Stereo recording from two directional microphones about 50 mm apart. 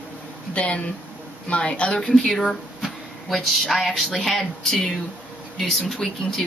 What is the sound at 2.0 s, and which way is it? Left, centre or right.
Speech, centre.